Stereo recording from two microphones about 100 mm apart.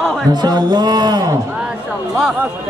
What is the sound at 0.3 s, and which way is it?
Speech, 45° right (ahead or behind).